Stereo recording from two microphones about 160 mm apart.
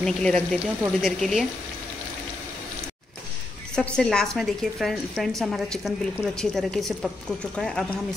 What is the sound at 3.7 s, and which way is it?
A woman's voice, 5° left (ahead or behind).